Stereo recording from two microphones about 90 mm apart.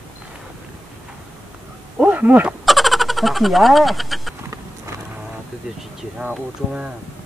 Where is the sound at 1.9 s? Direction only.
15° right (ahead or behind).